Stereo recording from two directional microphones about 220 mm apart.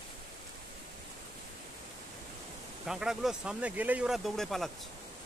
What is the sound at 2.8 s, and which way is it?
Speech, centre (ahead or behind).